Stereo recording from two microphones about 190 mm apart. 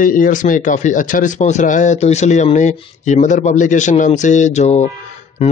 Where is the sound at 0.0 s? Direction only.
45° left (ahead or behind).